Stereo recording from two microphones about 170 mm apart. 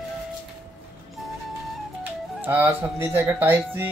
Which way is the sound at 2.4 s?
10° right (ahead or behind).